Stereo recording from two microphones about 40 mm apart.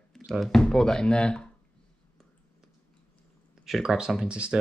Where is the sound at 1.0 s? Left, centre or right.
Left.